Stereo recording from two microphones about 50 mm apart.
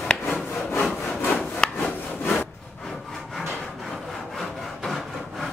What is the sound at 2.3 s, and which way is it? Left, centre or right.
Wood, centre.